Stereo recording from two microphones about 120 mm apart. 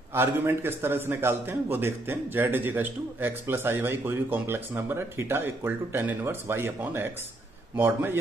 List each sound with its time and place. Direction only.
0.1 s a man's voice: 20° right (ahead or behind)